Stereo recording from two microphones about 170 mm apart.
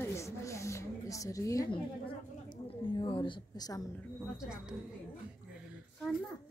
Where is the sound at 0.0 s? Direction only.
15° left (ahead or behind).